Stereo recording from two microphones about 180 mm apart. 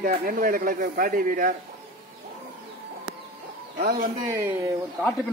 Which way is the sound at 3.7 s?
50° right (ahead or behind).